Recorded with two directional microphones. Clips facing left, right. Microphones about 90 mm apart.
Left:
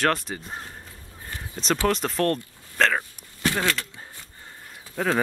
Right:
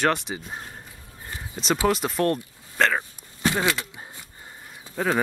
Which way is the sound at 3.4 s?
15° right (ahead or behind).